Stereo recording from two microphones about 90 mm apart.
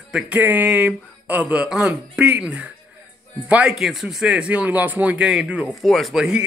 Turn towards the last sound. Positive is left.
turn(degrees=-10)  # may be behind; listen again after turning